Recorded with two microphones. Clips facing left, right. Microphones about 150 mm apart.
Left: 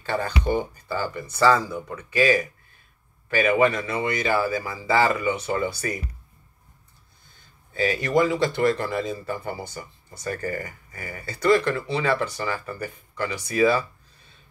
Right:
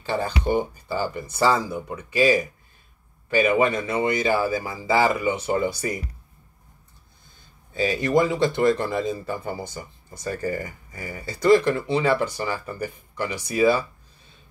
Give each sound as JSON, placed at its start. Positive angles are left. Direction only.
{"t": 0.1, "sound": "speech", "side_deg": -25}
{"t": 7.8, "sound": "speech", "side_deg": -20}